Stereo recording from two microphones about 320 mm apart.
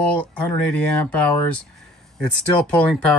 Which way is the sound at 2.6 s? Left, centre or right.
Centre.